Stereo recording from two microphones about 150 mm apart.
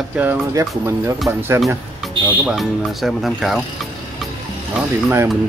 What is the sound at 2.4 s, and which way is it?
Speech, 5° right (ahead or behind).